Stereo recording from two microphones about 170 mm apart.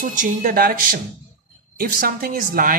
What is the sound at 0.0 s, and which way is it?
A woman's voice, 55° right (ahead or behind).